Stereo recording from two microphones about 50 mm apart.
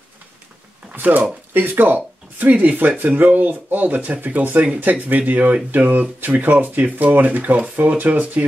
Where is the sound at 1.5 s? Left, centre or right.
Right.